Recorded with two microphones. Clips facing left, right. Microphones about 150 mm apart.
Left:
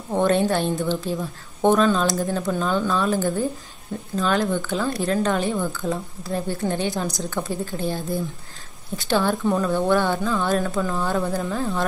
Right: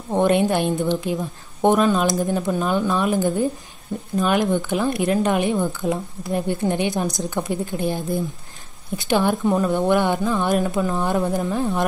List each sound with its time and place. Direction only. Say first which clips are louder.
0.1 s speech: right 2 dB; 15° right (ahead or behind)